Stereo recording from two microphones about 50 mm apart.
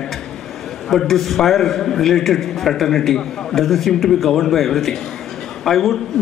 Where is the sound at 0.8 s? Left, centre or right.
Centre.